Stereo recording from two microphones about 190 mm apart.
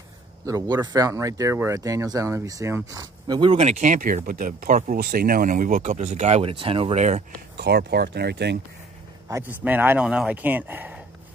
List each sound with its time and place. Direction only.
0.5 s speech: 20° right (ahead or behind); by 7.2 s 35° right (ahead or behind)
7.5 s speech: 60° right (ahead or behind)
9.3 s speech: 10° right (ahead or behind)